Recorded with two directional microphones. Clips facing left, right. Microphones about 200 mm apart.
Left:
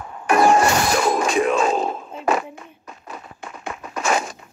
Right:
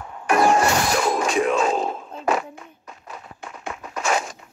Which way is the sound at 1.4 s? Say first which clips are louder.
Left 1 dB; 60° left (ahead or behind).